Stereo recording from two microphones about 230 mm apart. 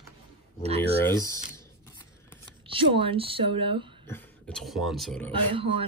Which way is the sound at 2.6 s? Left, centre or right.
Right.